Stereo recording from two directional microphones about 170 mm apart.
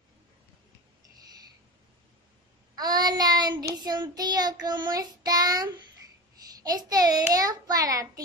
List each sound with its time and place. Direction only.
2.7 s child singing: 25° right (ahead or behind)
6.6 s a child's voice: 20° right (ahead or behind)